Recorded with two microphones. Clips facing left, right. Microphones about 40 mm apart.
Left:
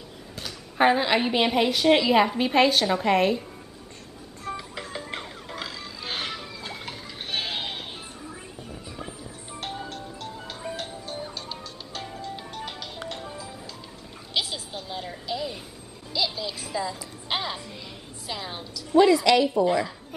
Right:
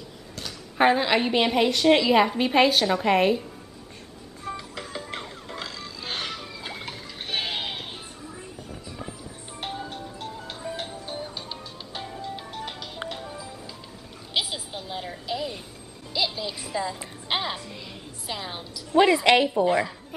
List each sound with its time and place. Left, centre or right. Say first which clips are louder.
0.4 s a woman's voice: even; centre
4.5 s music: left 1 dB; centre
6.6 s a sound: right 1 dB; centre
9.5 s music: right 1 dB; centre
14.3 s a sound: right 1 dB; centre
16.3 s music: even; centre
18.9 s music: even; right
19.5 s a woman's voice: even; centre